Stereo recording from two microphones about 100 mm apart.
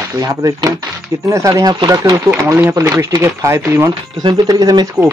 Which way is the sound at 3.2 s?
30° right (ahead or behind).